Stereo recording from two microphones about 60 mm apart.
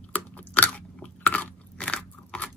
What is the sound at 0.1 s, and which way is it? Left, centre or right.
Crunch, left.